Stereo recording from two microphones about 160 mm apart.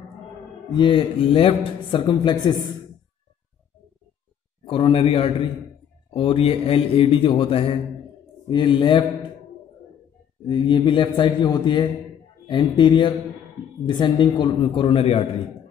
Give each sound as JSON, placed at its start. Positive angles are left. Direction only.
{"t": 0.7, "sound": "a man's voice", "side_deg": 30}
{"t": 4.6, "sound": "a man's voice", "side_deg": 35}
{"t": 10.4, "sound": "a man's voice", "side_deg": 30}